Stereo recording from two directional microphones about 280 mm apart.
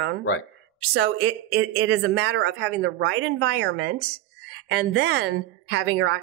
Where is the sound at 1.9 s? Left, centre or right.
Right.